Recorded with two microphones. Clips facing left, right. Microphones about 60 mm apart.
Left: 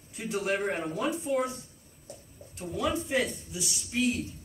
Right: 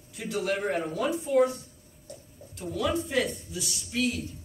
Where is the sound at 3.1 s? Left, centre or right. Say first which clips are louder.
Right 1 dB; left.